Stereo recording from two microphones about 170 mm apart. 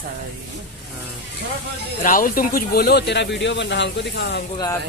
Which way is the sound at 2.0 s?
55° left (ahead or behind).